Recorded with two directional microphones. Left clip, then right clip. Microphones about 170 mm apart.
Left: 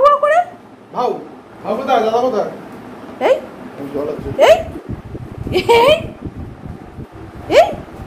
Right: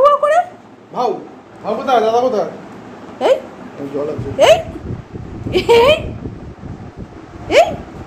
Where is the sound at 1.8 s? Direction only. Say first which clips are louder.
Right 1 dB; 40° right (ahead or behind).